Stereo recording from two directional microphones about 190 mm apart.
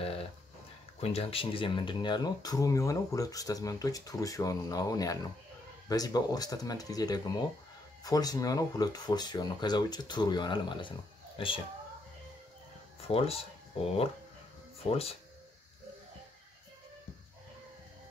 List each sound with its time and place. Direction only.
1.0 s speech: 30° left (ahead or behind)
13.0 s speech: 30° left (ahead or behind)